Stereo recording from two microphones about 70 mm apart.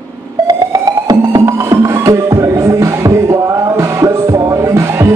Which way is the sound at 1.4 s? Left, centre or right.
Right.